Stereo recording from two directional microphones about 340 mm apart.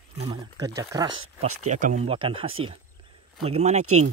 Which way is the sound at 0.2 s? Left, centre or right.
Centre.